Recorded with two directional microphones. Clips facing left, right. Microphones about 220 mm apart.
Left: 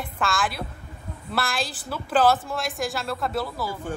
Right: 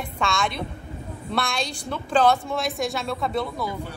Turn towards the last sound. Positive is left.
turn(degrees=5)  # may be behind; listen again after turning